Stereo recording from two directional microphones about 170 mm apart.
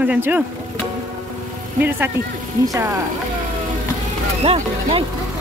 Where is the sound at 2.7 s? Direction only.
20° right (ahead or behind).